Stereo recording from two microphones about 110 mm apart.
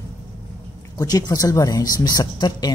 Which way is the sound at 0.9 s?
35° left (ahead or behind).